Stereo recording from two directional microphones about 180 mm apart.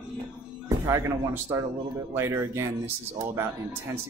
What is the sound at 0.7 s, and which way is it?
Speech, 15° right (ahead or behind).